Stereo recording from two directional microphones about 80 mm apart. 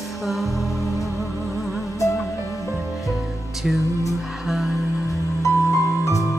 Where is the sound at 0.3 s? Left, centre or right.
Centre.